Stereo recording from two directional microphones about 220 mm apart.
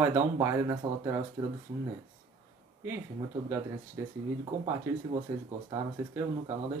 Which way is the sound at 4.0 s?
15° right (ahead or behind).